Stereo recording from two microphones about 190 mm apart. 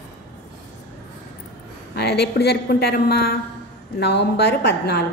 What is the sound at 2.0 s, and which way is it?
A woman's voice, 60° left (ahead or behind).